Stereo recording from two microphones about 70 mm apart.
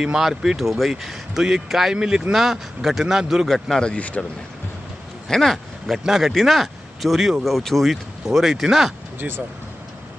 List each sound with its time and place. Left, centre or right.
0.0 s speech: centre
3.8 s speech: centre
5.3 s speech: centre